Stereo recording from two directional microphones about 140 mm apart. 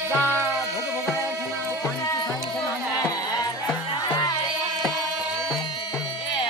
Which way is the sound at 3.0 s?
25° left (ahead or behind).